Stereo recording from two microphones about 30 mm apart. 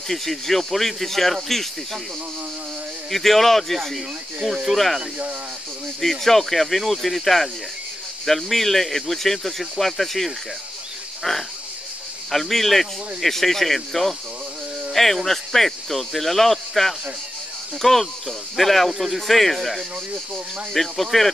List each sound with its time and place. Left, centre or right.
0.1 s speech: centre
3.1 s speech: centre